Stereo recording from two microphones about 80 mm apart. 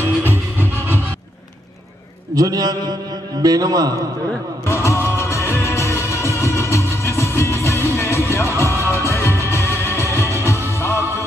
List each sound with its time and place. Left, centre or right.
0.0 s music: right
2.3 s a man's voice: right
4.6 s music: left